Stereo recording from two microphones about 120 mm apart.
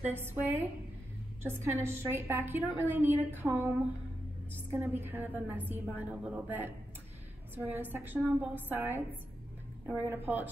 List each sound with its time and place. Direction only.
0.1 s a woman's voice: 20° right (ahead or behind)